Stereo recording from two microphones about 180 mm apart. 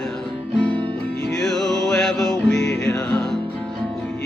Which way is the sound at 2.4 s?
70° left (ahead or behind).